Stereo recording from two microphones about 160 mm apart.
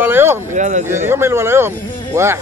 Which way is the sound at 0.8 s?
15° right (ahead or behind).